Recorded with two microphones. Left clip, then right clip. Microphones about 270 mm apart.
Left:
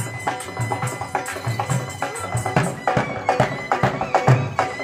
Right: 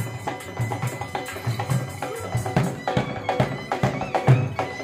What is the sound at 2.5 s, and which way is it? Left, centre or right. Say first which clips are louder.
Music: left 5 dB; left.